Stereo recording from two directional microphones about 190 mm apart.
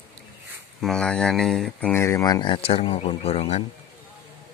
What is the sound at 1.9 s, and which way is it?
Speech, 15° left (ahead or behind).